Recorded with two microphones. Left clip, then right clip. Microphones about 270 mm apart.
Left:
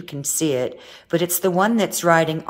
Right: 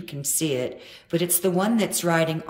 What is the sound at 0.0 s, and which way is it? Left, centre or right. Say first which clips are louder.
A woman's voice: left 5 dB; centre.